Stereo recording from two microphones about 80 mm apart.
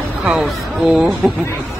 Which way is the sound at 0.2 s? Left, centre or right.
Centre.